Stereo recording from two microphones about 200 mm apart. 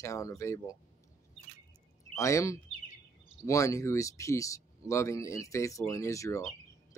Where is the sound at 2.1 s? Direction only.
15° left (ahead or behind).